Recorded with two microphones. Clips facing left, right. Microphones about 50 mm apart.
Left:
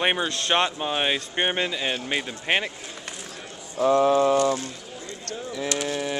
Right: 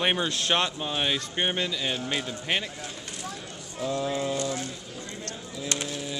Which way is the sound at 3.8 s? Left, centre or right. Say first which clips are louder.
Left 10 dB; left.